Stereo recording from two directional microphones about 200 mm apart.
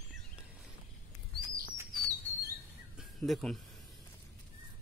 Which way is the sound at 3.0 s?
Centre (ahead or behind).